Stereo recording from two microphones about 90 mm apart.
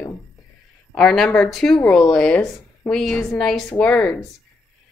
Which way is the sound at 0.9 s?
5° left (ahead or behind).